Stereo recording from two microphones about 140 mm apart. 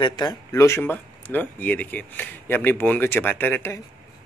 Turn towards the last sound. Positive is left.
turn(degrees=15)  # may be behind; listen again after turning